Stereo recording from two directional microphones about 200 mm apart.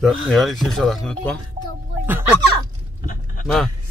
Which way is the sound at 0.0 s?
Centre (ahead or behind).